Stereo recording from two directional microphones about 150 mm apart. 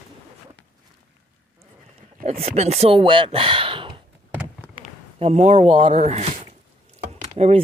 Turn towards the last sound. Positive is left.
turn(degrees=-45)  # may be behind; listen again after turning